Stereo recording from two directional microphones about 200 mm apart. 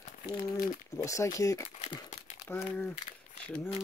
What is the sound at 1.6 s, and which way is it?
Crumpling, 30° left (ahead or behind).